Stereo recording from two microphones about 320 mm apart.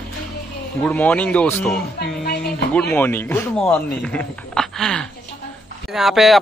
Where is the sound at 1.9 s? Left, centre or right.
Left.